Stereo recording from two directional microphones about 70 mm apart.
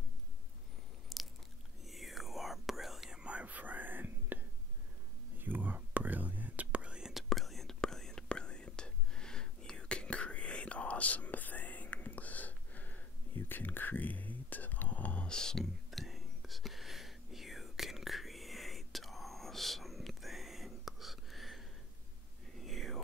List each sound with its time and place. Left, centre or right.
1.1 s biting: centre
1.9 s whispering: centre
7.2 s whispering: centre